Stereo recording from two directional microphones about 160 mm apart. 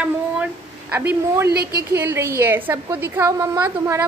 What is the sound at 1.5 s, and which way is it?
Speech, 75° right (ahead or behind).